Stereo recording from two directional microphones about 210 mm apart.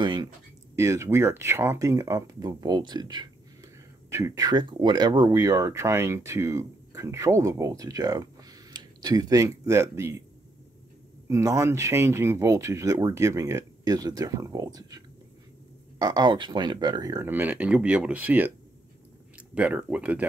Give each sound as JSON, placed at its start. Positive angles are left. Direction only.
{"t": 0.0, "sound": "speech", "side_deg": -20}
{"t": 11.2, "sound": "speech", "side_deg": -15}